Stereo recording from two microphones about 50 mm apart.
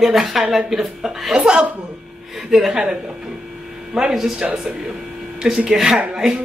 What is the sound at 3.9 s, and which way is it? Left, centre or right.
Speech, centre.